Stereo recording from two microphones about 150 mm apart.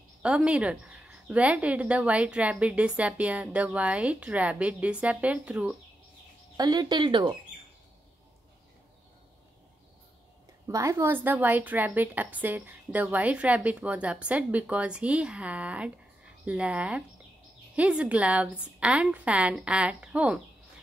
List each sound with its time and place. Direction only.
0.2 s speech: 5° right (ahead or behind)
6.5 s speech: 25° right (ahead or behind)
10.7 s speech: 20° right (ahead or behind)